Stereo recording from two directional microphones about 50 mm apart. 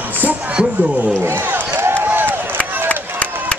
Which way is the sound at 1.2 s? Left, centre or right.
Right.